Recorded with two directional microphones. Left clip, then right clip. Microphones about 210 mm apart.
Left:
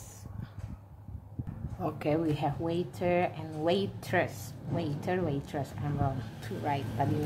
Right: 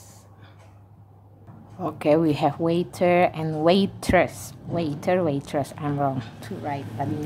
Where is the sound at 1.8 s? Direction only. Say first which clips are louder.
Right 10 dB; 25° right (ahead or behind).